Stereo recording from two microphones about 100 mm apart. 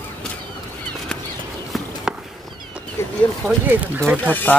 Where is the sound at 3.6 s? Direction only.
20° right (ahead or behind).